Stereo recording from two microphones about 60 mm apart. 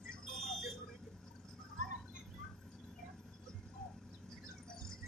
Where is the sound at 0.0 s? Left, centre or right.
Centre.